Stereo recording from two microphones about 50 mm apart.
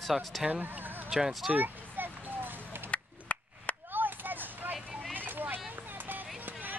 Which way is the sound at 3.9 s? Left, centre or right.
Right.